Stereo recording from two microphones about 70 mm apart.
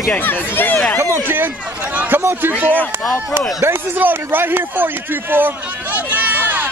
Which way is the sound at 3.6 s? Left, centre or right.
Right.